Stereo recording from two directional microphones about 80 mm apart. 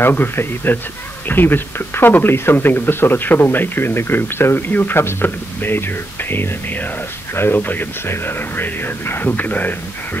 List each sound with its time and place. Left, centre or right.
0.0 s speech: left